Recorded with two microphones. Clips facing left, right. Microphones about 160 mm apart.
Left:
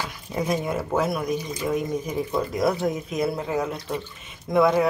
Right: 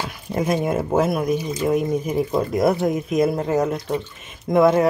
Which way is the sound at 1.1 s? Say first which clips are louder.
Right 5 dB; 25° right (ahead or behind).